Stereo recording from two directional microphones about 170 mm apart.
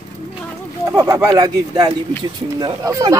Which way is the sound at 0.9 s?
15° right (ahead or behind).